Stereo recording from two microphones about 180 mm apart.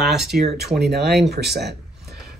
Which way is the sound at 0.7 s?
65° right (ahead or behind).